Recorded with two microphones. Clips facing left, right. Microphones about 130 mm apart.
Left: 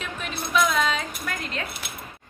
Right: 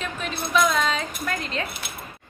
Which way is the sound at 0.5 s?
5° left (ahead or behind).